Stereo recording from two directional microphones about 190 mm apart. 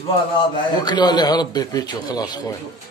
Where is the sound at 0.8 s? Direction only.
20° left (ahead or behind).